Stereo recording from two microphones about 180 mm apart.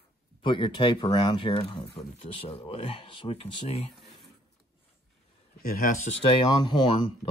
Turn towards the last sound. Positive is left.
turn(degrees=25)  # may be behind; listen again after turning